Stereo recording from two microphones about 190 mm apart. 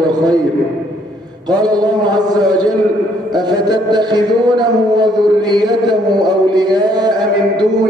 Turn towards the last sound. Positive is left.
turn(degrees=-20)  # may be behind; listen again after turning